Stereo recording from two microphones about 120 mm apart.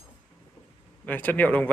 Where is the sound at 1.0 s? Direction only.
15° left (ahead or behind).